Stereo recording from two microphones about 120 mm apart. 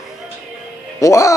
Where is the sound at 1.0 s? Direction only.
25° left (ahead or behind).